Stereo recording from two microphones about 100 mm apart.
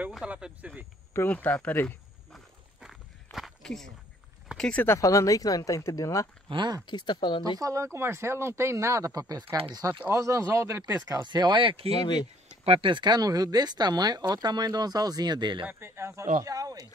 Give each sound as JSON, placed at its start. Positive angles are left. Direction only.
{"t": 0.2, "sound": "speech", "side_deg": -10}
{"t": 1.1, "sound": "speech", "side_deg": 15}
{"t": 2.3, "sound": "a sound", "side_deg": 0}
{"t": 4.6, "sound": "speech", "side_deg": 10}
{"t": 4.8, "sound": "speech", "side_deg": 30}
{"t": 6.5, "sound": "speech", "side_deg": -50}
{"t": 6.9, "sound": "speech", "side_deg": 50}
{"t": 7.5, "sound": "speech", "side_deg": -35}
{"t": 11.1, "sound": "speech", "side_deg": -45}
{"t": 12.0, "sound": "speech", "side_deg": 50}
{"t": 12.6, "sound": "speech", "side_deg": -75}
{"t": 12.9, "sound": "speech", "side_deg": -50}
{"t": 15.6, "sound": "speech", "side_deg": -25}